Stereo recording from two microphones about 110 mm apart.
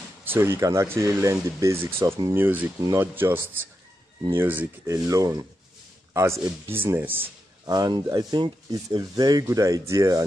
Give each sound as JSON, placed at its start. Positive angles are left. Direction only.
{"t": 0.2, "sound": "speech", "side_deg": -20}
{"t": 4.8, "sound": "speech", "side_deg": -30}
{"t": 7.6, "sound": "speech", "side_deg": -40}